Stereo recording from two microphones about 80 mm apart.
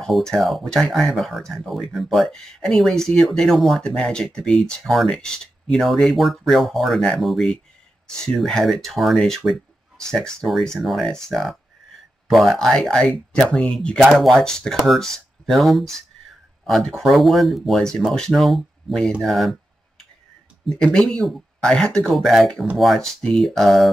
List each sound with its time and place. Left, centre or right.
0.0 s speech: centre
3.8 s speech: centre
20.6 s speech: centre
22.0 s speech: centre